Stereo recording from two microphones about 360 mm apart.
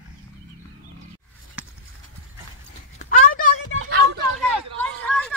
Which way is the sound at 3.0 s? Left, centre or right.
Left.